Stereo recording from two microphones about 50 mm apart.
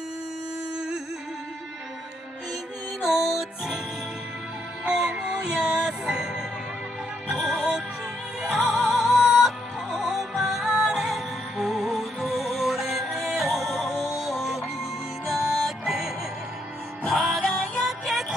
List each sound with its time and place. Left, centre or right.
3.0 s music: centre
4.8 s music: centre
17.1 s music: centre